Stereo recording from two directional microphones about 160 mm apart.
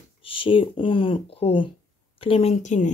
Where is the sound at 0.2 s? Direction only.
35° left (ahead or behind).